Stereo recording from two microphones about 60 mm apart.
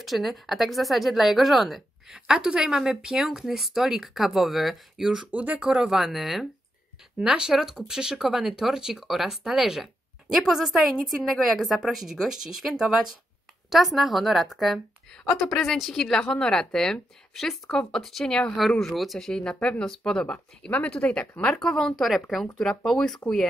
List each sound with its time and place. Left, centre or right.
0.0 s speech: centre
5.3 s speech: right
5.9 s a woman's voice: centre
22.0 s speech: centre